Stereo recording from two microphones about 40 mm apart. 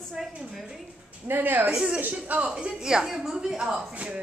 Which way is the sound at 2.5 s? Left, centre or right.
Centre.